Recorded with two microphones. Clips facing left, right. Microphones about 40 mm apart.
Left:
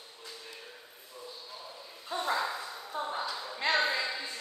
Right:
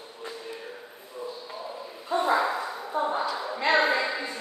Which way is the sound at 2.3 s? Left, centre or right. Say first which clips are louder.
Right 8 dB; right.